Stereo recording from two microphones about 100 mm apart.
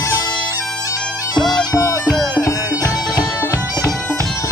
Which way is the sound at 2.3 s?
40° left (ahead or behind).